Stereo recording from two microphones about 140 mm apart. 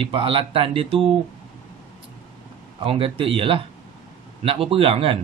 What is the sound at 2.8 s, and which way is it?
Speech, 40° right (ahead or behind).